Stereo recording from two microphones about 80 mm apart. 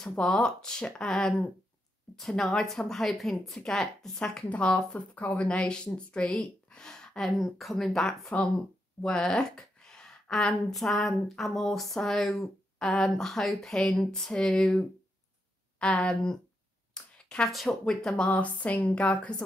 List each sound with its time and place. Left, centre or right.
0.0 s speech: centre
9.0 s a sound: centre
10.5 s speech: centre
18.3 s speech: centre